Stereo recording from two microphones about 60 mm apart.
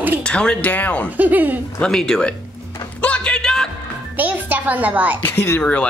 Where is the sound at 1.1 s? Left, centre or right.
Right.